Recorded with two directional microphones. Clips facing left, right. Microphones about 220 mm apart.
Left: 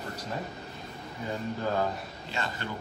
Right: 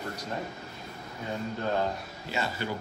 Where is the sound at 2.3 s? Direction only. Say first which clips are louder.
Right 3 dB; 5° right (ahead or behind).